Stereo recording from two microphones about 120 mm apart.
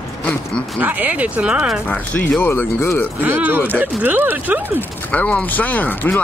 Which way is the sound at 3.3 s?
15° right (ahead or behind).